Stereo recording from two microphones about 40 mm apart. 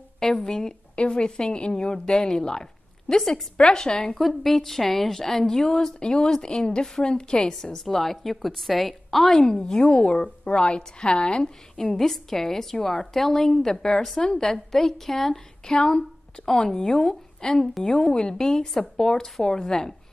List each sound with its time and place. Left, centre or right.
0.2 s a woman's voice: centre
0.9 s a woman's voice: left
4.4 s a woman's voice: centre
9.4 s a woman's voice: left
11.7 s a woman's voice: centre